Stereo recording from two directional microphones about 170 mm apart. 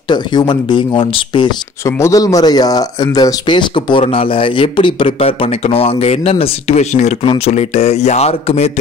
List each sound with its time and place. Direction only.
0.1 s speech: 25° left (ahead or behind)
1.9 s speech: 15° left (ahead or behind); by 8.7 s 35° left (ahead or behind)